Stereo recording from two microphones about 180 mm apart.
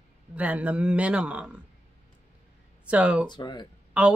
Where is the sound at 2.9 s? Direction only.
5° right (ahead or behind).